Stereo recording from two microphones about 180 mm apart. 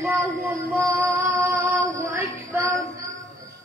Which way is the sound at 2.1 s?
15° right (ahead or behind).